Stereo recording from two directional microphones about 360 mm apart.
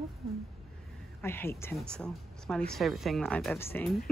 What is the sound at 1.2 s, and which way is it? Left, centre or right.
Speech, centre.